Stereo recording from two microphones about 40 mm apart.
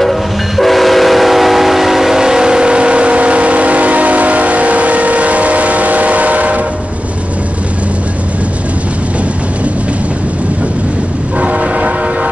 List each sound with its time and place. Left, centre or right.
0.0 s train: centre; by 6.6 s right
11.3 s train: right